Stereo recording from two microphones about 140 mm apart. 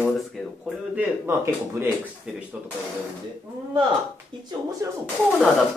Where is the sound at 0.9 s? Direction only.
20° right (ahead or behind).